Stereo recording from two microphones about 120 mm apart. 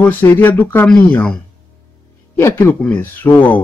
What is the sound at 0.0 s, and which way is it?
Speech, 15° left (ahead or behind).